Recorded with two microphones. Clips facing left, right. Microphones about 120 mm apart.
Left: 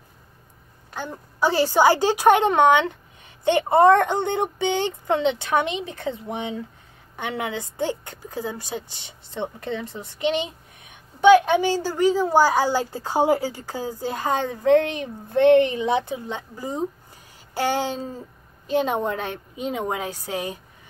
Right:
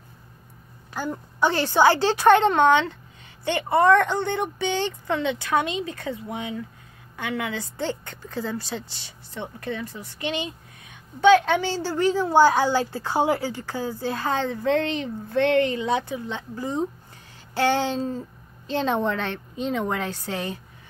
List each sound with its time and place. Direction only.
0.9 s a woman's voice: 5° right (ahead or behind)
1.4 s a woman's voice: 10° left (ahead or behind)